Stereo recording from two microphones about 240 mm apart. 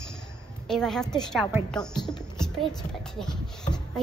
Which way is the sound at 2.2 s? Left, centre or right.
Centre.